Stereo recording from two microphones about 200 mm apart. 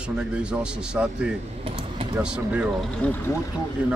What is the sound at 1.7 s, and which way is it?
Speech, 30° right (ahead or behind).